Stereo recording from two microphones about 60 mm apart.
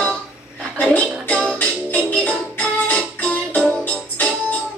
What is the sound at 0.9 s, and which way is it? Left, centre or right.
Music, left.